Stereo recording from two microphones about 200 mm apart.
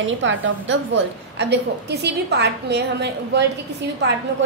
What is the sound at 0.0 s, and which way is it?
A woman's voice, 65° right (ahead or behind).